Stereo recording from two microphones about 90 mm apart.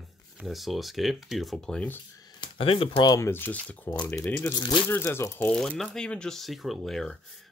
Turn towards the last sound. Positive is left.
turn(degrees=5)  # may be behind; listen again after turning